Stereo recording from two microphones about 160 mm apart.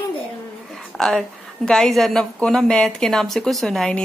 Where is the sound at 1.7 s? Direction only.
Centre (ahead or behind).